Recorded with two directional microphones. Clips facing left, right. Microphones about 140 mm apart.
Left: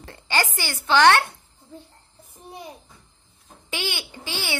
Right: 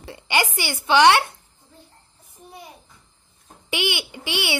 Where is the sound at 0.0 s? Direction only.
15° right (ahead or behind).